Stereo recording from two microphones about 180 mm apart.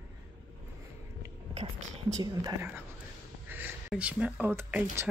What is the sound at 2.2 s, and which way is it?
Speech, 20° right (ahead or behind).